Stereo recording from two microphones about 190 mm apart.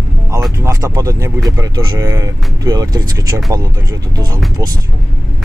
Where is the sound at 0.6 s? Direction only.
15° right (ahead or behind).